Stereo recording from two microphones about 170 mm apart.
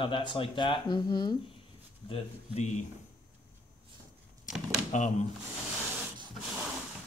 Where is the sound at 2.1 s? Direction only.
40° left (ahead or behind).